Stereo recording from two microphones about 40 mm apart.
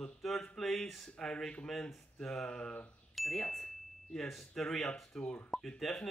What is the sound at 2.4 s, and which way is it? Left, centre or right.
Speech, left.